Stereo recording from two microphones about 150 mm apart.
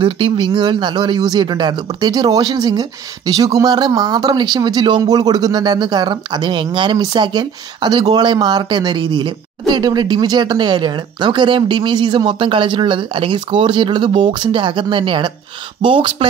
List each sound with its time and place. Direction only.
0.0 s speech: 35° right (ahead or behind)